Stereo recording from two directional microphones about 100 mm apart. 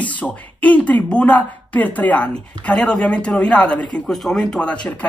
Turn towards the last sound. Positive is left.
turn(degrees=10)  # may be behind; listen again after turning